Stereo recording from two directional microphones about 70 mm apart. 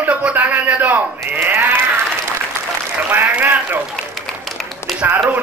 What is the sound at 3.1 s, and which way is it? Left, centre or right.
Speech, right.